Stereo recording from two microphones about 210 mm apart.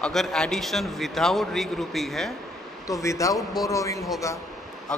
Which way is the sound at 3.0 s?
15° left (ahead or behind).